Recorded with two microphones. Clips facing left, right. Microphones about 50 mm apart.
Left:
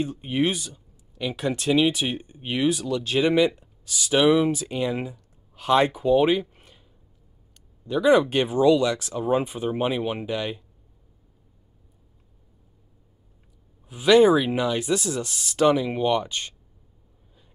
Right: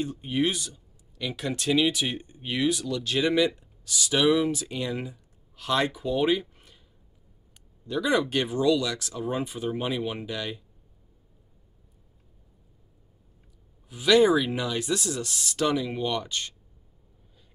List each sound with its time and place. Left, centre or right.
0.0 s speech: centre
6.1 s a sound: centre
7.8 s speech: left
13.8 s speech: left